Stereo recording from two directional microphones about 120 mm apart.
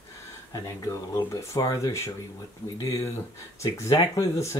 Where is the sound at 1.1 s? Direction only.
25° left (ahead or behind).